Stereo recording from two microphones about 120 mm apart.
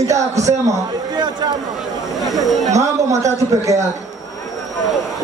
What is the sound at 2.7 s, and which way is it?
A man's voice, 25° right (ahead or behind).